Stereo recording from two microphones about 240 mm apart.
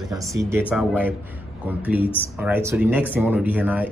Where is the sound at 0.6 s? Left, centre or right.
Centre.